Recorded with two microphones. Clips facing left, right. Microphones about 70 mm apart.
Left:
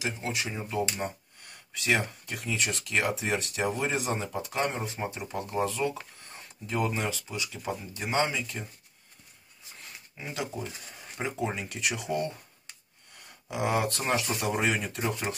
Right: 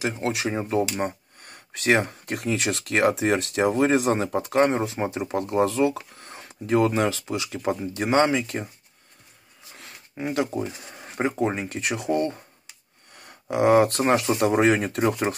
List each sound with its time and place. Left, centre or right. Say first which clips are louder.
0.0 s speech: right 7 dB; right
4.8 s speech: right 8 dB; right
9.8 s a sound: right 10 dB; right
10.9 s speech: right 9 dB; right